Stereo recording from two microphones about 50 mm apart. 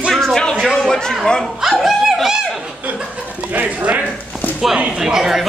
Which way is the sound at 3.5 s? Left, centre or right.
Right.